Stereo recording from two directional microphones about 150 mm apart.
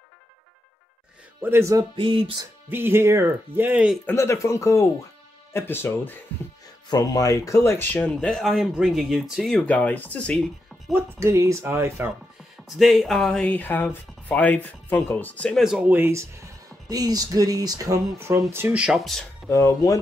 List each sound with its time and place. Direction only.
1.4 s speech: 15° right (ahead or behind)
2.0 s music: 35° right (ahead or behind)
2.7 s speech: 15° right (ahead or behind)
4.0 s speech: 15° left (ahead or behind)
6.9 s speech: 25° left (ahead or behind); by 10.5 s 5° left (ahead or behind)
10.9 s speech: 15° right (ahead or behind)
12.6 s speech: centre (ahead or behind)
15.6 s speech: 10° right (ahead or behind)
19.5 s speech: 20° left (ahead or behind)